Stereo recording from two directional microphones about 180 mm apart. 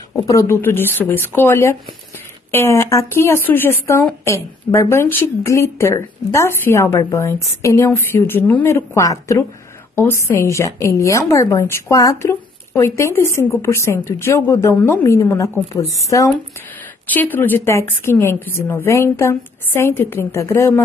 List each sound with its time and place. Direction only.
0.2 s a woman's voice: 15° left (ahead or behind)